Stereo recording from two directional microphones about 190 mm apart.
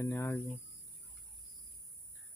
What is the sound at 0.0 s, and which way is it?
Speech, 15° left (ahead or behind).